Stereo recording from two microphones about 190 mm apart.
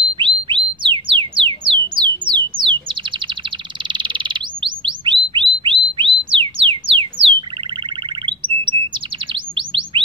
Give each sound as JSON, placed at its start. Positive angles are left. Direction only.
{"t": 0.1, "sound": "a sound", "side_deg": -25}
{"t": 2.0, "sound": "music", "side_deg": -25}
{"t": 2.6, "sound": "bird", "side_deg": -25}